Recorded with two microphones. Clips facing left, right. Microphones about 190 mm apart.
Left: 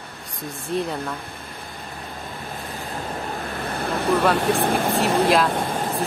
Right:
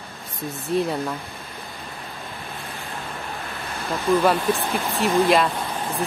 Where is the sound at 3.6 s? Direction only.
60° left (ahead or behind).